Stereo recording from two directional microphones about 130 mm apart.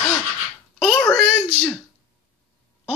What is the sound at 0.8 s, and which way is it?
Speech, 5° left (ahead or behind).